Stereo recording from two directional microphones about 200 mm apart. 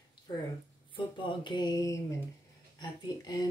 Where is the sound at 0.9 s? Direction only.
25° left (ahead or behind).